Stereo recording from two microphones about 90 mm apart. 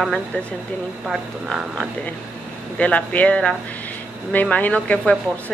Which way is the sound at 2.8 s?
15° left (ahead or behind).